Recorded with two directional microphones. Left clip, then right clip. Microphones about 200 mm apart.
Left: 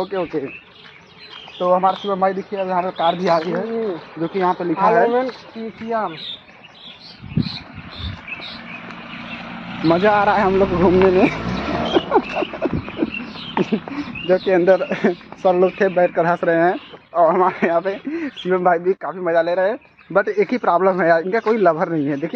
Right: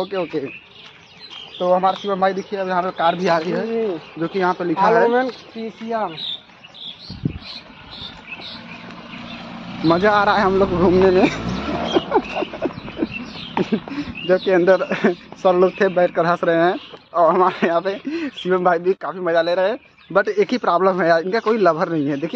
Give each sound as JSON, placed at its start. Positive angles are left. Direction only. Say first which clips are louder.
{"t": 0.1, "sound": "speech", "louder": "left 1 dB", "side_deg": 5}
{"t": 1.6, "sound": "speech", "louder": "left 1 dB", "side_deg": 5}
{"t": 5.9, "sound": "speech", "louder": "left 1 dB", "side_deg": 20}
{"t": 9.4, "sound": "speech", "louder": "even", "side_deg": 0}
{"t": 11.6, "sound": "wild animals", "louder": "left 2 dB", "side_deg": 40}
{"t": 12.3, "sound": "a sound", "louder": "left 2 dB", "side_deg": 10}
{"t": 13.7, "sound": "speech", "louder": "even", "side_deg": 0}